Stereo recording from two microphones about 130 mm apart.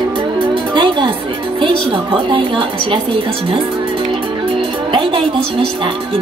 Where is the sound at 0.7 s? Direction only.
40° right (ahead or behind).